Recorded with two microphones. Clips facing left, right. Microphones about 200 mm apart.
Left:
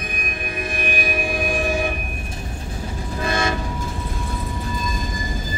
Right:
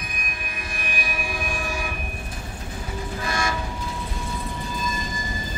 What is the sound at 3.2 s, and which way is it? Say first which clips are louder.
Train: left 6 dB; 25° left (ahead or behind).